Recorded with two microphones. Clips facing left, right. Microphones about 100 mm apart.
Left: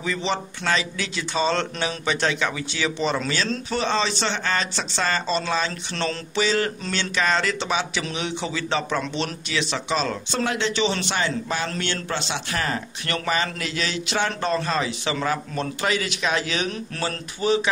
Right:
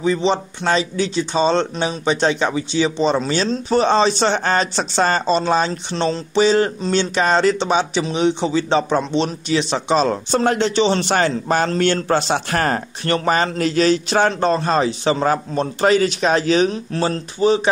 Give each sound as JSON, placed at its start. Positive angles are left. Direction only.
{"t": 0.0, "sound": "speech", "side_deg": -30}
{"t": 3.7, "sound": "a man's voice", "side_deg": -40}
{"t": 5.7, "sound": "a man's voice", "side_deg": -25}
{"t": 13.0, "sound": "a man's voice", "side_deg": -35}